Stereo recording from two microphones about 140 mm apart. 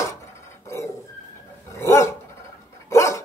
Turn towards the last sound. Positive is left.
turn(degrees=20)  # may be behind; listen again after turning